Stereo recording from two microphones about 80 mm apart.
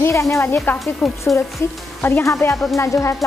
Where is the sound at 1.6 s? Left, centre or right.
Left.